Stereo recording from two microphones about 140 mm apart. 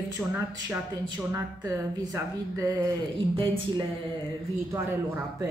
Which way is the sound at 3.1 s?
35° right (ahead or behind).